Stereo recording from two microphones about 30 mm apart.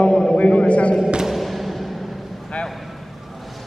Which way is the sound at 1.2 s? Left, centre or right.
Centre.